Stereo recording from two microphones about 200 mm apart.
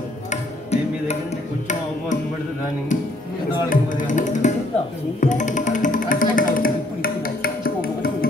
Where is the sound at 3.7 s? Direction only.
40° left (ahead or behind).